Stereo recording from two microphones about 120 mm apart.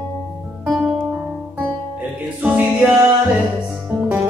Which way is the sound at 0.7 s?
10° right (ahead or behind).